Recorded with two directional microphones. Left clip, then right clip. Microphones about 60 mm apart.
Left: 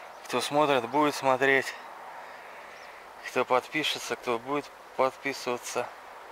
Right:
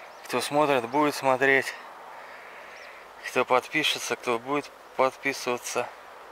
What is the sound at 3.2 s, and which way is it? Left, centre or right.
Speech, right.